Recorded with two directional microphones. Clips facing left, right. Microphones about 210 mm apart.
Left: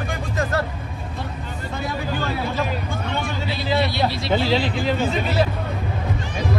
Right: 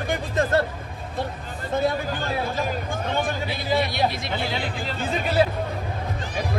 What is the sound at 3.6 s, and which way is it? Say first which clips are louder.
Speech: left 2 dB; 50° right (ahead or behind).